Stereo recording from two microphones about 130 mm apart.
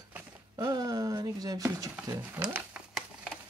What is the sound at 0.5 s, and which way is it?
Speech, 30° right (ahead or behind).